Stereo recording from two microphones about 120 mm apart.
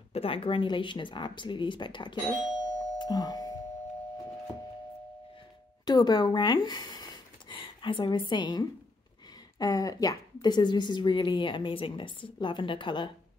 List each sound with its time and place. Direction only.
0.1 s speech: 50° left (ahead or behind)
2.6 s doorbell: 35° left (ahead or behind)
5.9 s a woman's voice: 35° left (ahead or behind)